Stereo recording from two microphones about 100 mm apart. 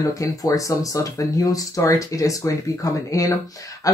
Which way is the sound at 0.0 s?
35° left (ahead or behind).